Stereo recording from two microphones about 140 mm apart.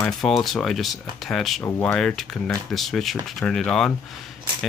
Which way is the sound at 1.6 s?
15° left (ahead or behind).